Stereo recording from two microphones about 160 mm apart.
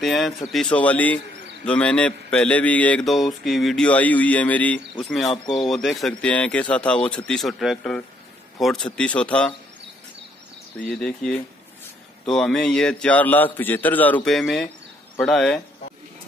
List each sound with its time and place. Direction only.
0.0 s speech: centre (ahead or behind)
10.9 s speech: 5° left (ahead or behind)